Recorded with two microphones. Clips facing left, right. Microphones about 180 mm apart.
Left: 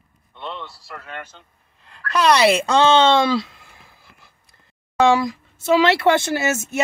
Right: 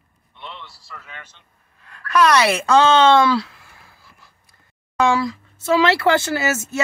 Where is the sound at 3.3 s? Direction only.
20° left (ahead or behind).